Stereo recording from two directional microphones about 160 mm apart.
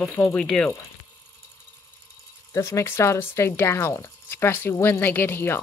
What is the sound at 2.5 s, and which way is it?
Speech, 15° left (ahead or behind).